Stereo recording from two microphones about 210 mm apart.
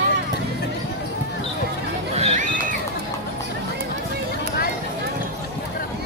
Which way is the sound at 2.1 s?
30° right (ahead or behind).